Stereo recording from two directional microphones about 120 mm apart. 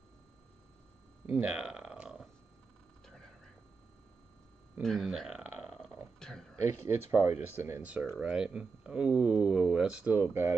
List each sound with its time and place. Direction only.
1.2 s a sound: 10° right (ahead or behind)
4.8 s speech: centre (ahead or behind)
5.7 s burping: 20° right (ahead or behind)
6.1 s a sound: 5° left (ahead or behind)
6.6 s speech: 20° right (ahead or behind)
7.8 s speech: 10° right (ahead or behind)
10.2 s speech: 20° right (ahead or behind)